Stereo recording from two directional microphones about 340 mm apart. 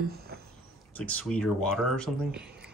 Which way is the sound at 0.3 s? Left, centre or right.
Right.